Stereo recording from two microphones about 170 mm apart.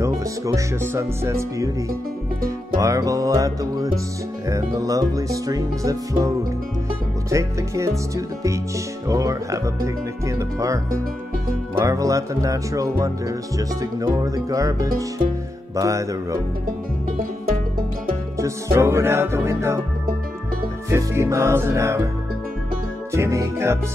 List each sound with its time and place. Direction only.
0.0 s speech: 20° right (ahead or behind)
2.8 s speech: 20° right (ahead or behind)
9.0 s speech: 20° right (ahead or behind)
18.4 s speech: 15° right (ahead or behind)
20.9 s speech: 15° right (ahead or behind)
23.1 s speech: 15° right (ahead or behind)